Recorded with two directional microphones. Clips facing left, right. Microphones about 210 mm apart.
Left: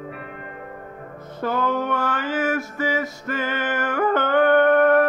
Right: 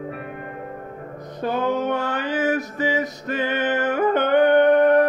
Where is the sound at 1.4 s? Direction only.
20° right (ahead or behind).